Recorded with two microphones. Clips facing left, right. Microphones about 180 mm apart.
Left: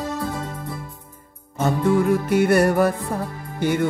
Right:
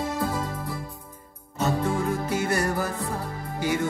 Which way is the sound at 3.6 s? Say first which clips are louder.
Left 5 dB; 55° left (ahead or behind).